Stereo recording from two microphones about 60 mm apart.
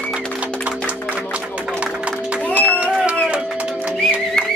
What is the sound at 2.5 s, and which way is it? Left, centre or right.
Music, right.